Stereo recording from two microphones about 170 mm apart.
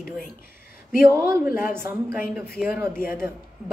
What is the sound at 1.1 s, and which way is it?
Speech, 15° right (ahead or behind).